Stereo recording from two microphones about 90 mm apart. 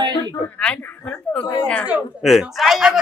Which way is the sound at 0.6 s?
15° left (ahead or behind).